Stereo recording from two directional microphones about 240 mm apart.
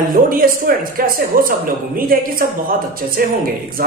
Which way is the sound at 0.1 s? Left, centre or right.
Right.